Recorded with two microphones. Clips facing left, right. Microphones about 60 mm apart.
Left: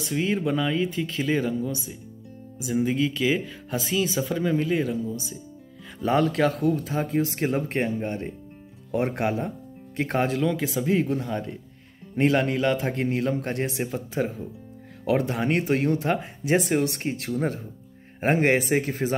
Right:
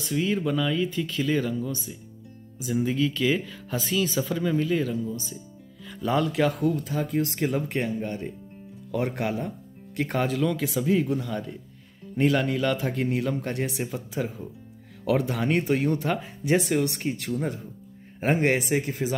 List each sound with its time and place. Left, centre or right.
0.0 s speech: left
6.0 s speech: left
6.6 s speech: left
15.2 s speech: left
18.3 s a man's voice: left